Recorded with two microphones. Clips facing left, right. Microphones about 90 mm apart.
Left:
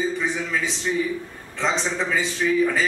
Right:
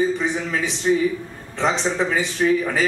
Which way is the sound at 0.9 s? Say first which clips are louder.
Right 6 dB; 30° right (ahead or behind).